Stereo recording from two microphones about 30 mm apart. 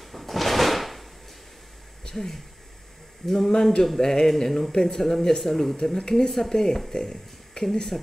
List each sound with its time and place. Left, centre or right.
0.0 s drawer open or close: centre
2.0 s speech: centre